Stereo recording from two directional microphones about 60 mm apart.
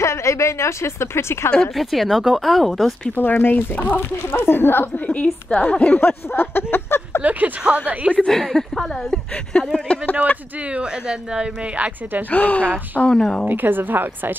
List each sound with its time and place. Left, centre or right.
0.0 s a woman's voice: left
1.5 s speech: centre
3.2 s speech: left
4.4 s speech: left
5.0 s a woman's voice: left
5.9 s speech: left
7.2 s a woman's voice: right
8.3 s speech: centre
10.7 s speech: centre
12.3 s a woman's voice: left
13.0 s speech: centre
13.5 s a woman's voice: right